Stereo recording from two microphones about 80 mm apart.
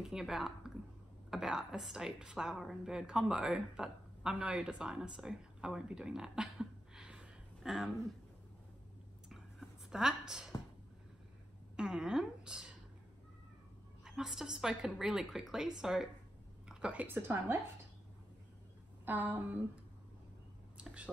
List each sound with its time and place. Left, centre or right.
0.0 s a woman's voice: centre
9.3 s a sound: centre
11.7 s a woman's voice: centre
14.0 s a woman's voice: centre; by 17.6 s right
19.0 s a woman's voice: right
20.7 s a sound: centre